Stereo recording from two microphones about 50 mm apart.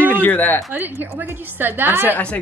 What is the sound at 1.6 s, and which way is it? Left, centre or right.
Speech, right.